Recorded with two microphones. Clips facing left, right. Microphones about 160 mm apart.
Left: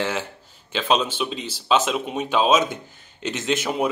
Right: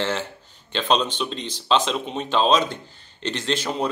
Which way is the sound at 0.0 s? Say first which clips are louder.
Even; 10° left (ahead or behind).